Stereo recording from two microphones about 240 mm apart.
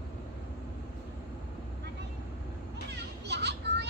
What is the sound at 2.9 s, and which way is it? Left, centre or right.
Children playing, right.